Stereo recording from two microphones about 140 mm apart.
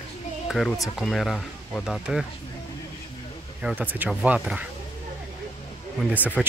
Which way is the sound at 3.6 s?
10° right (ahead or behind).